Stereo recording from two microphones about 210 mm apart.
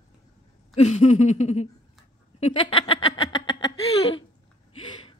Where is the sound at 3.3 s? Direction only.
65° left (ahead or behind).